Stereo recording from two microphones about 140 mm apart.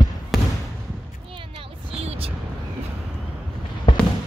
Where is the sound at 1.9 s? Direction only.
40° right (ahead or behind).